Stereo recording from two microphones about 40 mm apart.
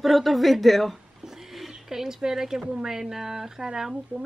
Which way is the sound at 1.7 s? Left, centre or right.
Centre.